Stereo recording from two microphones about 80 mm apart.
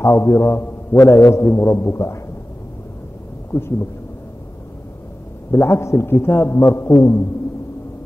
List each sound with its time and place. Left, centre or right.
0.0 s a man's voice: left
5.5 s a man's voice: left